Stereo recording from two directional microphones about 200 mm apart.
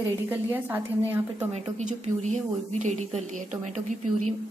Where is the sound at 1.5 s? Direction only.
35° right (ahead or behind).